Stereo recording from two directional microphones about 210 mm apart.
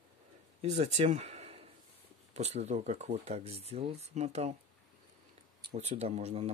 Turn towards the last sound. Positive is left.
turn(degrees=-30)  # may be behind; listen again after turning